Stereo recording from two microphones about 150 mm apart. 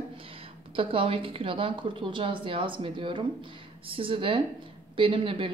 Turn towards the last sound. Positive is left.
turn(degrees=-35)  # may be behind; listen again after turning